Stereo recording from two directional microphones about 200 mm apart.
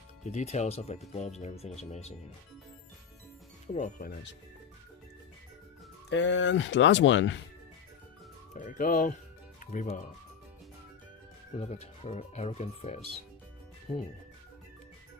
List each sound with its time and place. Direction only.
0.2 s speech: 35° left (ahead or behind)
3.6 s speech: 35° left (ahead or behind)
6.0 s speech: 65° left (ahead or behind)
8.5 s speech: 40° left (ahead or behind)
11.5 s speech: 35° left (ahead or behind)